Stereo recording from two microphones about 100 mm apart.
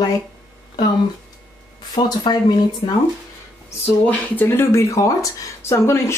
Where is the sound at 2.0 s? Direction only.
45° left (ahead or behind).